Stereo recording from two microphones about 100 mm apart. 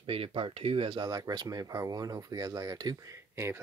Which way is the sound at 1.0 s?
40° right (ahead or behind).